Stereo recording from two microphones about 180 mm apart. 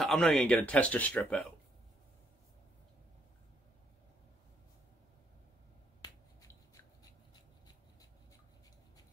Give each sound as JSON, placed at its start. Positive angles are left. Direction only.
{"t": 0.0, "sound": "speech", "side_deg": 0}
{"t": 6.0, "sound": "finger snapping", "side_deg": 20}